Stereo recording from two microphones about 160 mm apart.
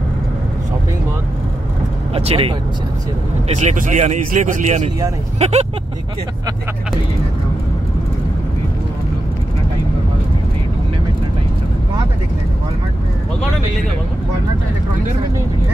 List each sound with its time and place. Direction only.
2.1 s speech: 35° right (ahead or behind)
3.4 s a man's voice: 50° right (ahead or behind)